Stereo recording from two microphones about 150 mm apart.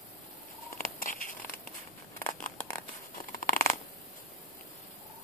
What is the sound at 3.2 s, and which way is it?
Scissors, 65° left (ahead or behind).